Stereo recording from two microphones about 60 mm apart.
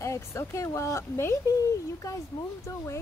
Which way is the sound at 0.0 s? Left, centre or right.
Left.